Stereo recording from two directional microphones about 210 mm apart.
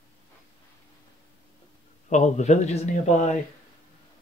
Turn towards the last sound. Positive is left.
turn(degrees=35)  # may be behind; listen again after turning